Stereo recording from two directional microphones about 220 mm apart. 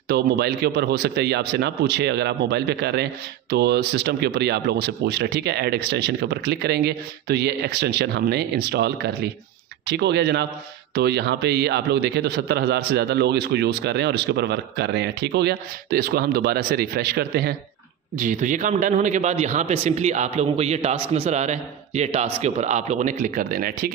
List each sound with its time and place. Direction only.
0.1 s speech: 45° right (ahead or behind)
18.1 s a man's voice: 35° right (ahead or behind)